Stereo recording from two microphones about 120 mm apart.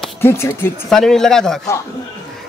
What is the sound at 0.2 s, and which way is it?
Speech, 20° left (ahead or behind).